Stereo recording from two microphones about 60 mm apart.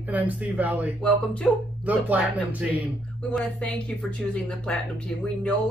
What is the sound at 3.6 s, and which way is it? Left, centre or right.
Speech, centre.